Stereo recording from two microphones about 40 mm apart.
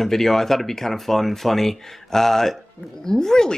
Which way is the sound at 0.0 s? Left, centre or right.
Centre.